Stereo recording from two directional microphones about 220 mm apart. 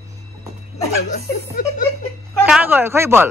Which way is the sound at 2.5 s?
5° right (ahead or behind).